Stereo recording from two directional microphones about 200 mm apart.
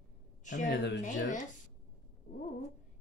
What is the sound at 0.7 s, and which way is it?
Speech, 60° left (ahead or behind).